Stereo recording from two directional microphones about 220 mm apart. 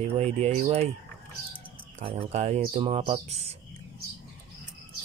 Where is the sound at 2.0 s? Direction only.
25° right (ahead or behind).